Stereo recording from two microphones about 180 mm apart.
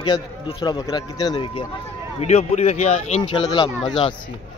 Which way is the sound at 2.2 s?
40° left (ahead or behind).